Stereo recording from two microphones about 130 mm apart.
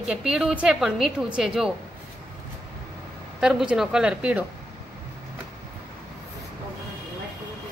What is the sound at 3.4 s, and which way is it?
Speech, 5° right (ahead or behind).